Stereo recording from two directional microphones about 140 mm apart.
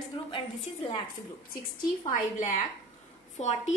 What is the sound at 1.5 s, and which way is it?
Speech, 75° left (ahead or behind).